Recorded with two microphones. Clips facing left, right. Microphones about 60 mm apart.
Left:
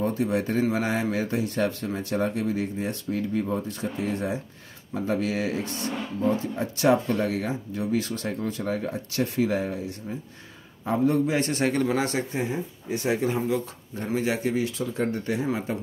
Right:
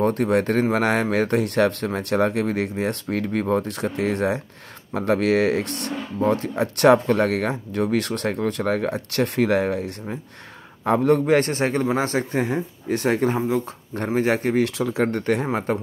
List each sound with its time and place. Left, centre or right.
0.0 s speech: right
11.5 s speech: right
14.6 s speech: right
15.4 s speech: right